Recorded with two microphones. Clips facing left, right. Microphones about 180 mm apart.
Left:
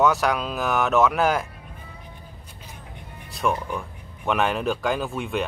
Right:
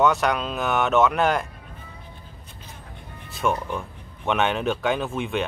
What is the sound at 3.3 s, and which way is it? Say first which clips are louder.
Speech: even; centre (ahead or behind).